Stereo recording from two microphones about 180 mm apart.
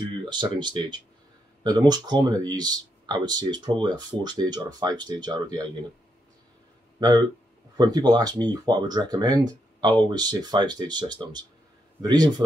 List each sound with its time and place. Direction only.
0.0 s speech: 25° right (ahead or behind)
7.0 s speech: 25° right (ahead or behind)